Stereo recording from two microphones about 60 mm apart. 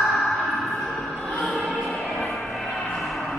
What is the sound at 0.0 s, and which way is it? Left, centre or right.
Music, centre.